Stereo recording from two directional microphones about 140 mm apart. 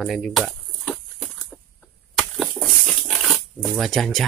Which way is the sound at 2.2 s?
Centre (ahead or behind).